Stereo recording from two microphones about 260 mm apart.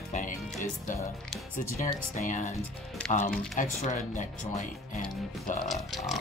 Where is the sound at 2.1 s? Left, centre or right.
Left.